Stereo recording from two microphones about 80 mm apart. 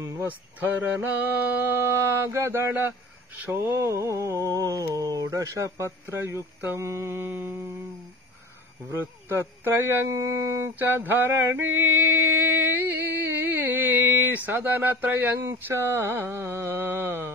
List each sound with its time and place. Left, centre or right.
0.0 s a sound: right
1.1 s mantra: right
3.6 s speech: right
9.0 s speech: right